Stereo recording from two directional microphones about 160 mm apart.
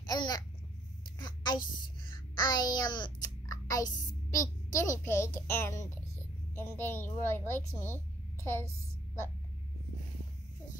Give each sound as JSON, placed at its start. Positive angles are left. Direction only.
{"t": 0.0, "sound": "babbling", "side_deg": 25}
{"t": 1.1, "sound": "a sound", "side_deg": 25}
{"t": 2.3, "sound": "a child's voice", "side_deg": 25}